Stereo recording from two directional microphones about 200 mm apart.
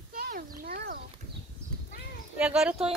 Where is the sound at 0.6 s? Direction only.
50° right (ahead or behind).